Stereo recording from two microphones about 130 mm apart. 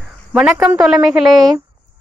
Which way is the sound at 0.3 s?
10° right (ahead or behind).